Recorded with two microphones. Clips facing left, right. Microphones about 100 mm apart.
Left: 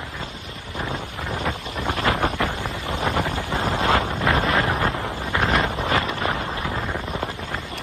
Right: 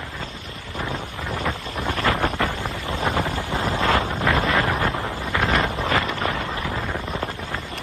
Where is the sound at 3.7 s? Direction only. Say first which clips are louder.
Even; 30° left (ahead or behind).